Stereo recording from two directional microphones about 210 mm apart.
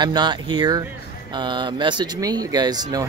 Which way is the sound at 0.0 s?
20° right (ahead or behind).